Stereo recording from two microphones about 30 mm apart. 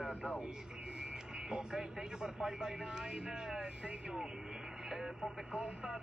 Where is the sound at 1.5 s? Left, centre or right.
Right.